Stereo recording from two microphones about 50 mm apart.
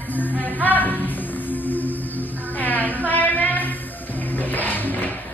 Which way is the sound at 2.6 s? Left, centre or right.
Left.